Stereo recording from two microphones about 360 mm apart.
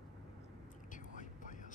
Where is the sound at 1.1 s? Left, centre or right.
Left.